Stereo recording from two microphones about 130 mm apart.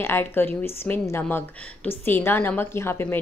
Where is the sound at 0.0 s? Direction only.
15° left (ahead or behind).